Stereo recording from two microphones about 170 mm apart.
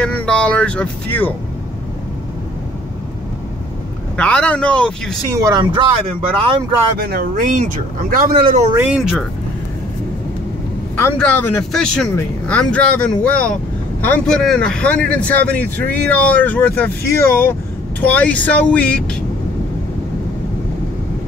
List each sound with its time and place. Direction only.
0.0 s vehicle: 5° left (ahead or behind)
4.2 s speech: 5° left (ahead or behind)
5.3 s speech: 20° right (ahead or behind)
7.0 s speech: 60° right (ahead or behind)
8.7 s speech: 5° right (ahead or behind)
11.0 s speech: 10° left (ahead or behind)